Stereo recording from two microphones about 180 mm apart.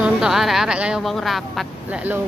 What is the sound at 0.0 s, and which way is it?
A woman's voice, 5° right (ahead or behind).